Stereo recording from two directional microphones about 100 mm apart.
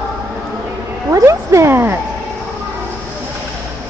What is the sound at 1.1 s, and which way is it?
Speech, 30° right (ahead or behind).